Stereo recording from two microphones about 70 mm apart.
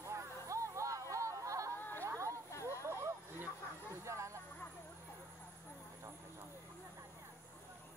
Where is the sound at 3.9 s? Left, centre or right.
Right.